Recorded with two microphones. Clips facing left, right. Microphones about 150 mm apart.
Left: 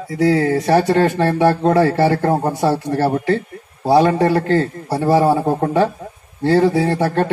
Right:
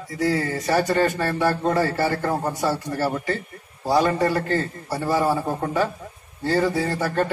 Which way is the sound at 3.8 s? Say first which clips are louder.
Left 6 dB; 60° left (ahead or behind).